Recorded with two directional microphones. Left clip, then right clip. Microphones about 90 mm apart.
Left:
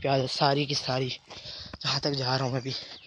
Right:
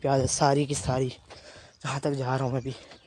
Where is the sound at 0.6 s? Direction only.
80° right.